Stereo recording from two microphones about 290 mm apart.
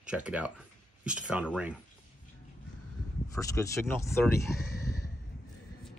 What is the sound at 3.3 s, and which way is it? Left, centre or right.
Speech, centre.